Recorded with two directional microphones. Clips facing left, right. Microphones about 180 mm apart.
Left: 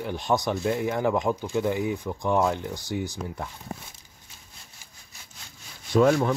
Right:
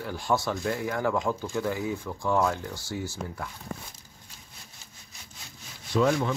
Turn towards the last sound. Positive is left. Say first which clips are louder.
# left 4 dB
turn(degrees=50)  # may be behind; listen again after turning